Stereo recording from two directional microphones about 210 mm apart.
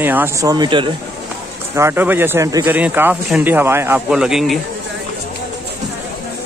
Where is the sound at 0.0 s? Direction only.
10° right (ahead or behind).